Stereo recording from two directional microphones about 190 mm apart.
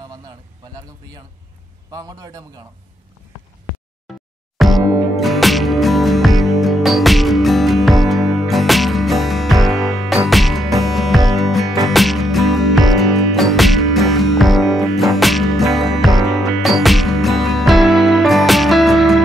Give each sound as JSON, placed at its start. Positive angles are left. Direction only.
{"t": 1.9, "sound": "a man's voice", "side_deg": -20}
{"t": 4.1, "sound": "music", "side_deg": 0}